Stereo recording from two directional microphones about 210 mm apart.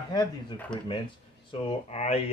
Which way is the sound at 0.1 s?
20° left (ahead or behind).